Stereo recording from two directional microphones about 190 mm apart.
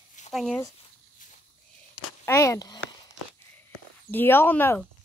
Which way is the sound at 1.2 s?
45° left (ahead or behind).